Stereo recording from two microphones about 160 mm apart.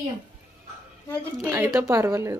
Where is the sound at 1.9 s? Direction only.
20° right (ahead or behind).